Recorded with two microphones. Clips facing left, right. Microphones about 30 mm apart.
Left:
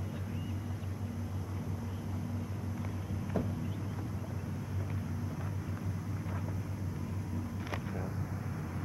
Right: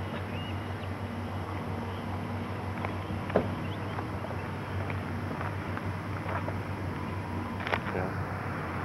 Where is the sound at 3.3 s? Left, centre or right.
Right.